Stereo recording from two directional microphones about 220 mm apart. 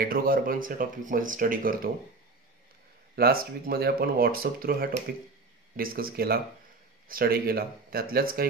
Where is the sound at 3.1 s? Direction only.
45° right (ahead or behind).